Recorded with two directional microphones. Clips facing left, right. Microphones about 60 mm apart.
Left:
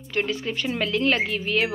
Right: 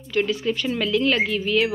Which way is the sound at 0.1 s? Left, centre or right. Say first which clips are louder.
Right 4 dB; left.